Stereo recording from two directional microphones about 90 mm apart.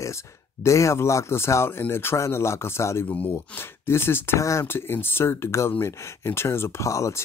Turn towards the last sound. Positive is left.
turn(degrees=35)  # may be behind; listen again after turning